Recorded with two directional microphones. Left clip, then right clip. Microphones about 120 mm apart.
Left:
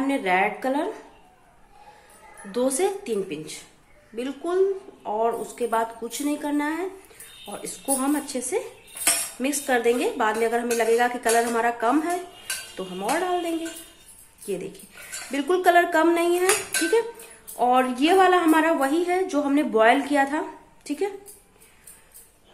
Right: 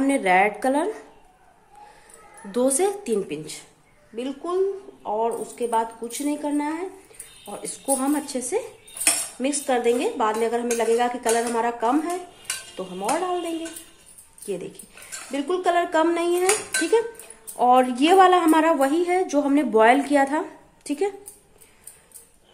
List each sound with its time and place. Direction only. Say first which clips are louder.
0.0 s a woman's voice: right 3 dB; 40° right (ahead or behind)
2.5 s a woman's voice: right 2 dB; 35° right (ahead or behind)
4.1 s a woman's voice: even; centre (ahead or behind)
9.7 s a woman's voice: even; 5° right (ahead or behind)
14.4 s a woman's voice: even; centre (ahead or behind)
15.2 s speech: left 3 dB; 20° left (ahead or behind)
15.8 s a woman's voice: left 1 dB; centre (ahead or behind)
16.3 s cutlery: even; 15° right (ahead or behind)